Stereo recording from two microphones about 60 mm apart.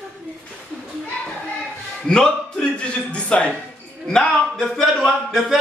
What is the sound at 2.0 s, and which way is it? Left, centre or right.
A man's voice, centre.